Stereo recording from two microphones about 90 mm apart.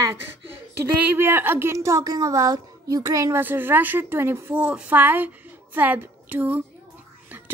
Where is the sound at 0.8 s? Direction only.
25° right (ahead or behind).